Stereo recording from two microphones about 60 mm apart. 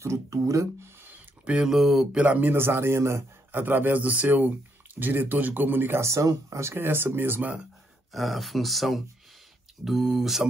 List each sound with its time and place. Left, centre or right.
0.0 s speech: right
1.4 s speech: centre
1.7 s speech: centre
2.1 s a man's voice: right
6.0 s speech: right
6.7 s a man's voice: right
8.1 s speech: centre